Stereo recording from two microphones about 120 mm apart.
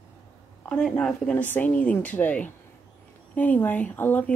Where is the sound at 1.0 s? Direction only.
10° left (ahead or behind).